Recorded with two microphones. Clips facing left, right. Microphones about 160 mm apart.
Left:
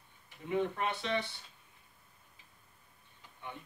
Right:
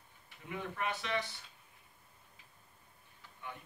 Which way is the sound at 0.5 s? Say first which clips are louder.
Left 6 dB; 25° left (ahead or behind).